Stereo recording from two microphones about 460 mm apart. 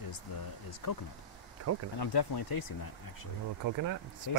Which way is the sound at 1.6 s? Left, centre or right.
Right.